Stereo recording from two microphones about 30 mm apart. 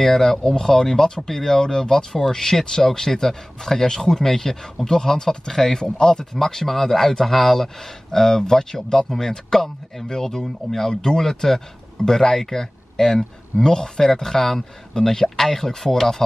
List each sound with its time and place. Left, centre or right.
0.0 s speech: centre